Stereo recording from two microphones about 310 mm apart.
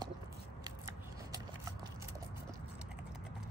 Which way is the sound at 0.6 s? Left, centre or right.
Centre.